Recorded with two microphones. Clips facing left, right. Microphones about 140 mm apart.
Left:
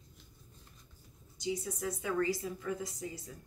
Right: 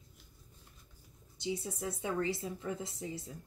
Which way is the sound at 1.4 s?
25° right (ahead or behind).